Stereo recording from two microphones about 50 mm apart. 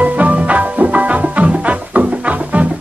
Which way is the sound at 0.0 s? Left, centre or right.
Right.